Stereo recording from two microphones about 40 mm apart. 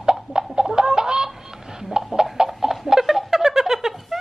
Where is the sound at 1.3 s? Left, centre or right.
Centre.